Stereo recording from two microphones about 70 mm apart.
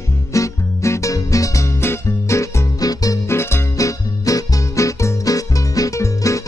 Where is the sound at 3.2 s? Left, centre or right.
Left.